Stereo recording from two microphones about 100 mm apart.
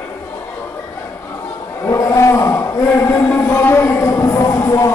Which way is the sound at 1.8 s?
30° left (ahead or behind).